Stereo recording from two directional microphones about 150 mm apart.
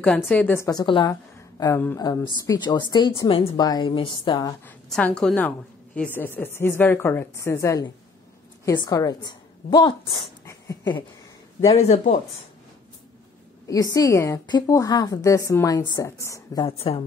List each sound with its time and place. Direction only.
0.0 s a woman's voice: 10° left (ahead or behind)
0.7 s a woman's voice: 30° left (ahead or behind)
3.5 s a woman's voice: 25° left (ahead or behind)
4.6 s a woman's voice: 5° left (ahead or behind); by 10.3 s 35° left (ahead or behind)
10.4 s dog: 20° left (ahead or behind)
11.7 s speech: 50° left (ahead or behind)
13.9 s a woman's voice: 20° left (ahead or behind)
16.6 s speech: 40° left (ahead or behind)